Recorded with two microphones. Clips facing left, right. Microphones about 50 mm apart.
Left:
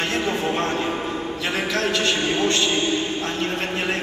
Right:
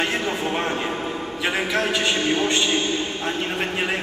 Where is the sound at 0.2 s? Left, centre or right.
Centre.